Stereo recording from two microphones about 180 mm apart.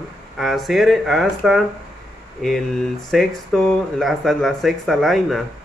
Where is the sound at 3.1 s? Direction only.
Centre (ahead or behind).